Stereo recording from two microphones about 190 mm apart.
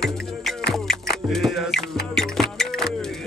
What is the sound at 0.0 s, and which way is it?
Music, centre (ahead or behind).